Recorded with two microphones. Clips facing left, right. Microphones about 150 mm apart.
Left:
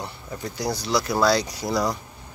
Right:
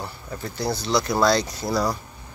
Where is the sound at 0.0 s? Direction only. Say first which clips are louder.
Even; 15° left (ahead or behind).